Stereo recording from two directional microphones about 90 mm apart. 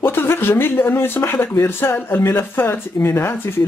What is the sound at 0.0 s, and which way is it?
Speech, 25° left (ahead or behind).